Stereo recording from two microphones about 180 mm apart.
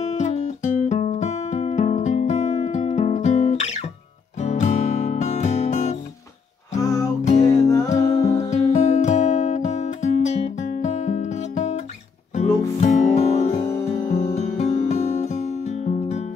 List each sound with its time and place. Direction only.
0.1 s music: 40° left (ahead or behind)
6.8 s music: 20° left (ahead or behind)
7.9 s music: 40° left (ahead or behind)